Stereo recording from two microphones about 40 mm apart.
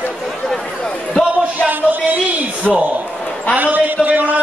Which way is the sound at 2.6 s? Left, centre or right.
Centre.